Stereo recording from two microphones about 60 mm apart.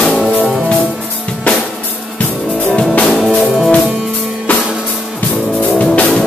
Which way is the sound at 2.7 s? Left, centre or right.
Left.